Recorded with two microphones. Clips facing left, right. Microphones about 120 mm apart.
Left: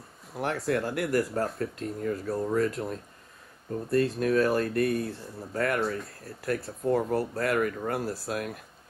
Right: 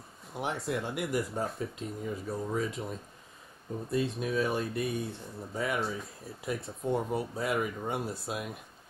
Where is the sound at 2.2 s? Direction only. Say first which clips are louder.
Left 5 dB; 65° left (ahead or behind).